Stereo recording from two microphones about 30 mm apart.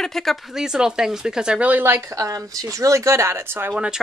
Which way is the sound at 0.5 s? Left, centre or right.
Right.